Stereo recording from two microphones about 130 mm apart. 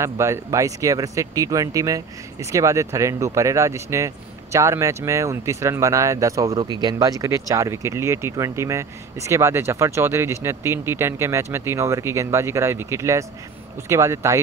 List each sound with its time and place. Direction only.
0.0 s speech: 20° right (ahead or behind)